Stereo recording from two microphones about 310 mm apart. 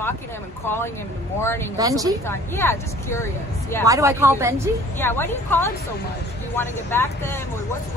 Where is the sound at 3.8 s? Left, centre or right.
Centre.